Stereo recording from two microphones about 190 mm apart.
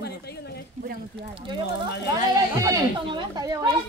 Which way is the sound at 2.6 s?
20° right (ahead or behind).